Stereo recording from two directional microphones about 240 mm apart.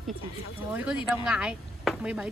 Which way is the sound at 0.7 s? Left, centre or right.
Centre.